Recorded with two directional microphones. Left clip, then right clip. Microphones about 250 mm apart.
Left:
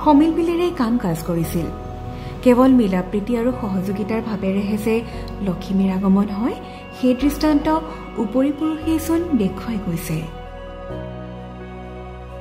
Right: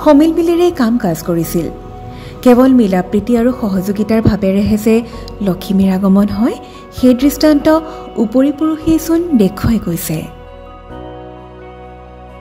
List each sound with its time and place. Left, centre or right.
0.2 s a woman's voice: centre